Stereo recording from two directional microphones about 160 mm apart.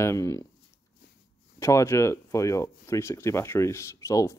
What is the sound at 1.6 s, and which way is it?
Speech, 15° left (ahead or behind).